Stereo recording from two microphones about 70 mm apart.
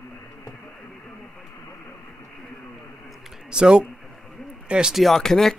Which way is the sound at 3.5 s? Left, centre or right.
Centre.